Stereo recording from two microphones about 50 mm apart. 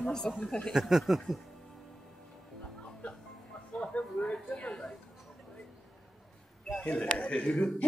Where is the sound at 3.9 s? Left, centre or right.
Left.